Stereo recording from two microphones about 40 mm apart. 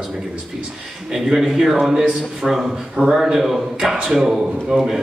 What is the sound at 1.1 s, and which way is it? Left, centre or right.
A man's voice, centre.